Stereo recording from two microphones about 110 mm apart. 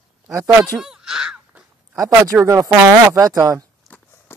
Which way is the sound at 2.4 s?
30° right (ahead or behind).